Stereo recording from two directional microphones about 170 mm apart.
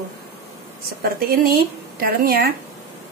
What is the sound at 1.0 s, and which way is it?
Speech, 60° right (ahead or behind).